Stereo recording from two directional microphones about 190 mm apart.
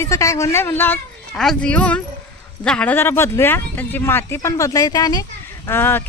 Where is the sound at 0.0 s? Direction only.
15° left (ahead or behind).